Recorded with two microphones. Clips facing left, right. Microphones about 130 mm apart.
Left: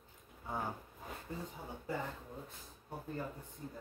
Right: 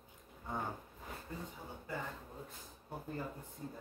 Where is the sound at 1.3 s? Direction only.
25° left (ahead or behind).